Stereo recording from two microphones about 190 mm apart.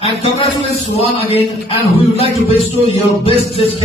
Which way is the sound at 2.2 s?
30° left (ahead or behind).